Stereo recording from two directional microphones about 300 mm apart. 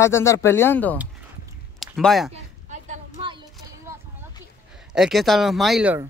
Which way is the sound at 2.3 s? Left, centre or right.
Right.